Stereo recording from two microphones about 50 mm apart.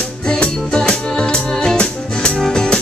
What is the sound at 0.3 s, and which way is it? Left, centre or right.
Music, centre.